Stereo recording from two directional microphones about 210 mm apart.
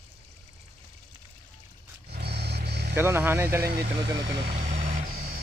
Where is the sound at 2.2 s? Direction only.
50° right (ahead or behind).